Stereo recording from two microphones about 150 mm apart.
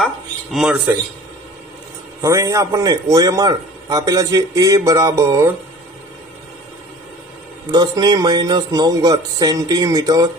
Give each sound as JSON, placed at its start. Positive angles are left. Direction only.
{"t": 0.0, "sound": "a sound", "side_deg": 0}
{"t": 2.2, "sound": "a man's voice", "side_deg": -20}
{"t": 7.7, "sound": "a man's voice", "side_deg": -25}